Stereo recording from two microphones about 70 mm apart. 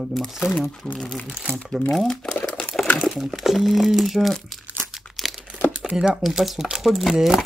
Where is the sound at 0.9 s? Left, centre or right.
Centre.